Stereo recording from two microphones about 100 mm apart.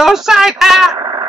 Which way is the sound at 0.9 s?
50° right (ahead or behind).